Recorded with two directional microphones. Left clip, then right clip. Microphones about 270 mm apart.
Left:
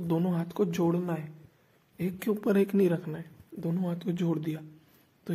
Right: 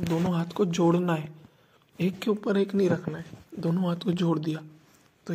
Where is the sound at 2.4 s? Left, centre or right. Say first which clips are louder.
Left 2 dB; centre.